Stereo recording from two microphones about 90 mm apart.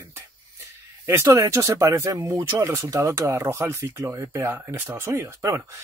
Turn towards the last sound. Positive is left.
turn(degrees=-35)  # may be behind; listen again after turning